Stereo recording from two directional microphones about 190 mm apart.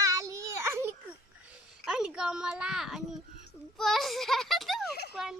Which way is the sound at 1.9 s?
5° right (ahead or behind).